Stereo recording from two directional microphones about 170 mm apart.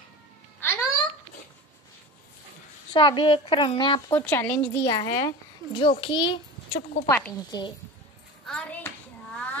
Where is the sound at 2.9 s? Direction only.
30° left (ahead or behind).